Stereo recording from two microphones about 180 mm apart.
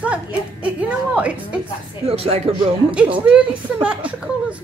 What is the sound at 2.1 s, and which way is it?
Speech, 35° right (ahead or behind).